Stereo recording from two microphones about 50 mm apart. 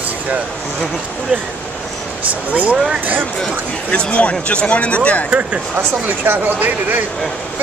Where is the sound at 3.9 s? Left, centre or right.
Left.